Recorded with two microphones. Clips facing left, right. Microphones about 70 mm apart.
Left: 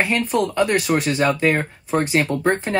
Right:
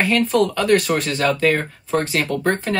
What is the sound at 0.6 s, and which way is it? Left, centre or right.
Speech, centre.